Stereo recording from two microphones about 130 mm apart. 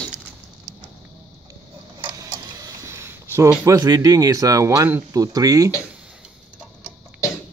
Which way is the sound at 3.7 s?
25° right (ahead or behind).